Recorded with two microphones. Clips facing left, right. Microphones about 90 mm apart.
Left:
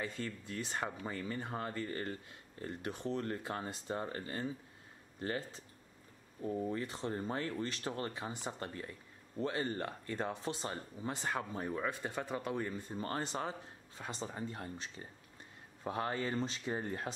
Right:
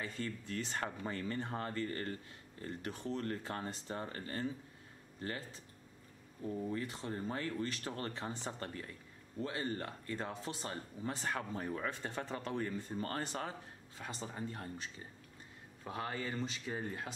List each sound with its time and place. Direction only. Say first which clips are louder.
0.0 s speech: left 1 dB; 20° left (ahead or behind)
6.5 s speech: left 2 dB; 25° left (ahead or behind)